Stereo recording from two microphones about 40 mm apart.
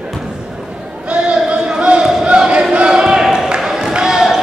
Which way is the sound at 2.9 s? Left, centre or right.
Centre.